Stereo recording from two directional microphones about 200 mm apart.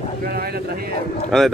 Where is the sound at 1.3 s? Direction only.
Centre (ahead or behind).